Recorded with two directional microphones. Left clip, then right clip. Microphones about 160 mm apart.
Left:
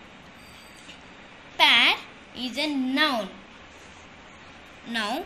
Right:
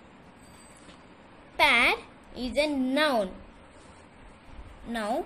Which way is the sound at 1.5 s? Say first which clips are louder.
Left 3 dB; 85° right.